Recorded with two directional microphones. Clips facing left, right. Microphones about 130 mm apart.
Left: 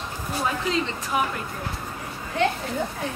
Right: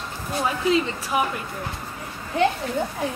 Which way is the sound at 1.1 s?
5° right (ahead or behind).